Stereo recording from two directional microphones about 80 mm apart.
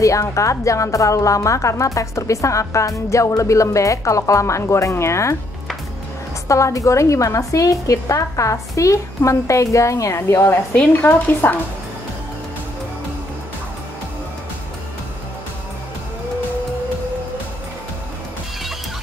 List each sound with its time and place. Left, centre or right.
0.0 s speech: left
6.4 s speech: left
10.5 s speech: left